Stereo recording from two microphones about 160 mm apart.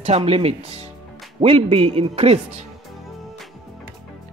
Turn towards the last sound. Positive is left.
turn(degrees=0)  # may be behind; listen again after turning